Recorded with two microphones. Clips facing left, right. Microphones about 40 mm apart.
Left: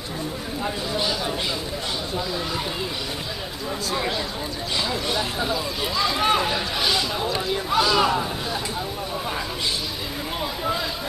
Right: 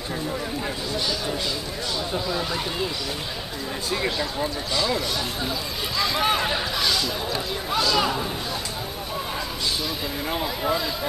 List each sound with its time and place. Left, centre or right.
0.9 s speech: centre
2.1 s speech: centre
5.1 s speech: centre
6.8 s speech: centre
10.4 s speech: centre